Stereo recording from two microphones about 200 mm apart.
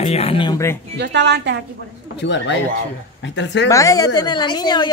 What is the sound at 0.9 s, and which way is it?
Speech, 60° right (ahead or behind).